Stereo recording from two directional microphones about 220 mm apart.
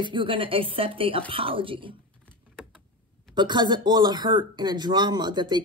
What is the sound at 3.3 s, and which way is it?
A woman's voice, 20° right (ahead or behind).